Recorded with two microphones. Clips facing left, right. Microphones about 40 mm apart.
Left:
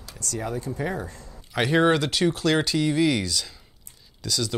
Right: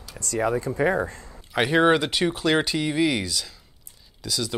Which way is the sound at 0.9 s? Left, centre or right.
Right.